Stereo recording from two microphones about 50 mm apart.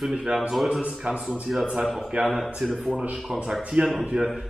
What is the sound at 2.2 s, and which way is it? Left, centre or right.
Speech, centre.